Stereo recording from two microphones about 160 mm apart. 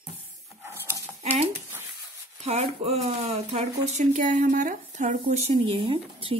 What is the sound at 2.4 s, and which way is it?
A woman's voice, 40° right (ahead or behind).